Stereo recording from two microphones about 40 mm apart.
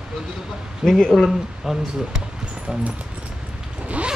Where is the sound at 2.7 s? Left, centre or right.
Right.